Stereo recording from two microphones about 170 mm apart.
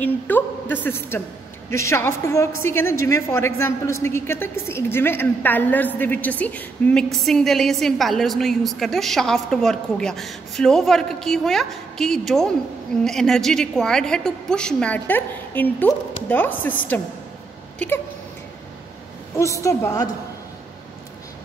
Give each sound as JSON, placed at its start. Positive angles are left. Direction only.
{"t": 0.0, "sound": "a woman's voice", "side_deg": 10}
{"t": 17.7, "sound": "a sound", "side_deg": 10}
{"t": 19.3, "sound": "a woman's voice", "side_deg": 20}